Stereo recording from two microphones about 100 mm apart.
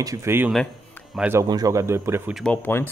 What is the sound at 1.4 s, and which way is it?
Speech, 40° right (ahead or behind).